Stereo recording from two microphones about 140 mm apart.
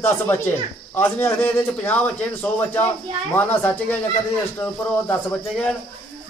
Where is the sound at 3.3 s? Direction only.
10° left (ahead or behind).